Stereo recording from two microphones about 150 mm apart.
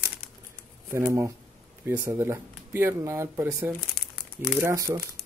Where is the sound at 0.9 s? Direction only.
15° right (ahead or behind).